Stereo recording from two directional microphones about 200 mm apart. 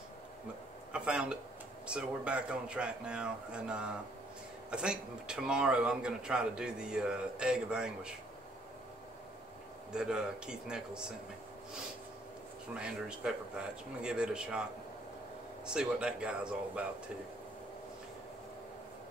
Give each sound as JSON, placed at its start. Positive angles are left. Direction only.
{"t": 0.9, "sound": "a man's voice", "side_deg": -5}
{"t": 9.9, "sound": "a man's voice", "side_deg": -5}
{"t": 12.7, "sound": "a man's voice", "side_deg": -5}